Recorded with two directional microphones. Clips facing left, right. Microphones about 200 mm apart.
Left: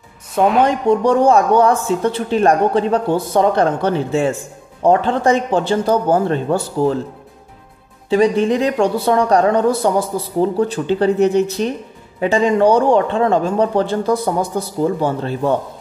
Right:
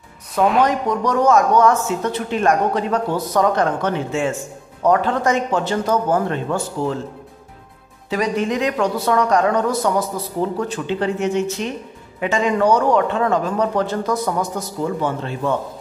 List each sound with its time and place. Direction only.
0.3 s a woman's voice: centre (ahead or behind)
0.7 s speech: 30° left (ahead or behind)
8.1 s speech: 30° left (ahead or behind)